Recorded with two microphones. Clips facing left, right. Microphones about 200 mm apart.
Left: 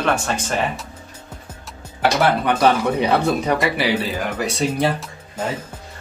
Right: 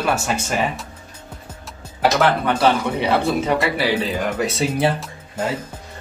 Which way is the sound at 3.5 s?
15° left (ahead or behind).